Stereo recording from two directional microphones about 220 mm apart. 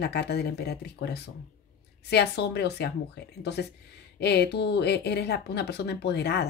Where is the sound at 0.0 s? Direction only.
50° left (ahead or behind).